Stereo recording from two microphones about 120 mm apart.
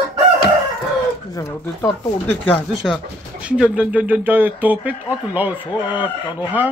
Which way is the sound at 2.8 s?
Centre (ahead or behind).